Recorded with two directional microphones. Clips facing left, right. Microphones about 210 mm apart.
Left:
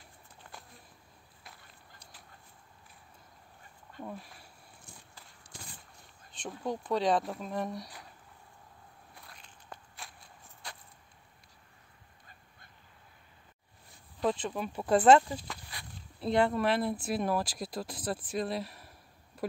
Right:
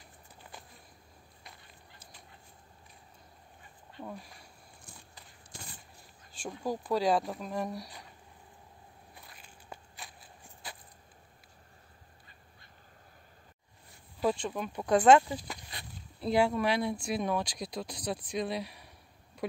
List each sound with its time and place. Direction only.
0.4 s a sound: centre (ahead or behind)
4.0 s speech: centre (ahead or behind)
6.4 s speech: centre (ahead or behind)
9.1 s crushing: 5° right (ahead or behind)
14.2 s speech: centre (ahead or behind)